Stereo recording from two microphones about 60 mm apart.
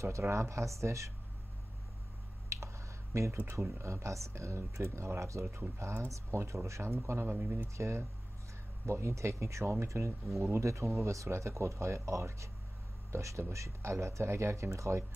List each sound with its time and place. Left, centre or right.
0.0 s speech: right
2.5 s a sound: right
3.7 s speech: right
7.2 s speech: right
7.7 s speech: right